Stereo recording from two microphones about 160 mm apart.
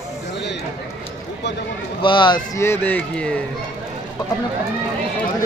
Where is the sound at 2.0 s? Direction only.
30° left (ahead or behind).